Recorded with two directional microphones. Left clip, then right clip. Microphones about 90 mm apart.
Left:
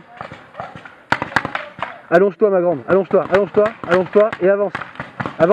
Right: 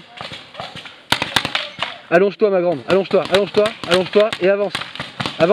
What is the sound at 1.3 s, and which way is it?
Tap, 10° right (ahead or behind).